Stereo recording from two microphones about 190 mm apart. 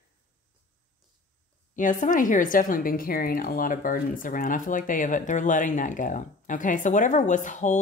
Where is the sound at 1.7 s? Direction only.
45° left (ahead or behind).